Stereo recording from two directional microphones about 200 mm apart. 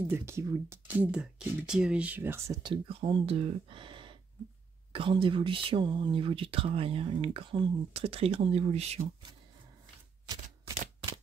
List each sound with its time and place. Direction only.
0.0 s speech: 10° right (ahead or behind); by 9.1 s 30° right (ahead or behind)